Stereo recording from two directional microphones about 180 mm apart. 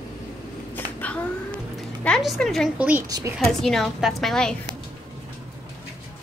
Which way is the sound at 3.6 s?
Centre (ahead or behind).